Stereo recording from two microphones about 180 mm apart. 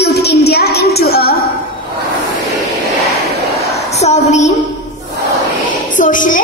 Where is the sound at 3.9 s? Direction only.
40° left (ahead or behind).